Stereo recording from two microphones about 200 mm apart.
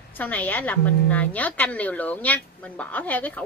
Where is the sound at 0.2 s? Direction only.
10° left (ahead or behind).